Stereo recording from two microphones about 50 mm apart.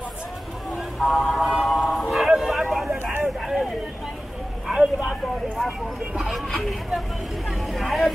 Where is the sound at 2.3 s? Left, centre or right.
Centre.